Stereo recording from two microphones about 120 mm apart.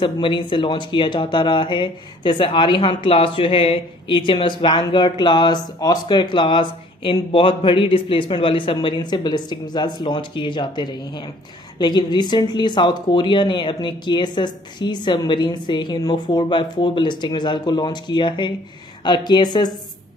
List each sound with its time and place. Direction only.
0.0 s speech: 45° left (ahead or behind)